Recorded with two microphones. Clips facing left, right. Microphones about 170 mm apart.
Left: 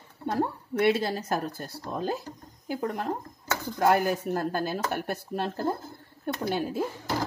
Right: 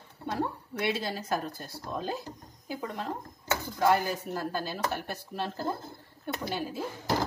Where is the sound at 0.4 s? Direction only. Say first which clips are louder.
Left 7 dB; 50° left (ahead or behind).